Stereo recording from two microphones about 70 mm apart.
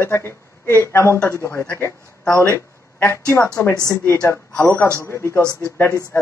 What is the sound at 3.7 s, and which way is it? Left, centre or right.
Speech, left.